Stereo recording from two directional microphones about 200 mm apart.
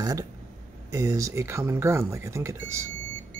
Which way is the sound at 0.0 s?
20° right (ahead or behind).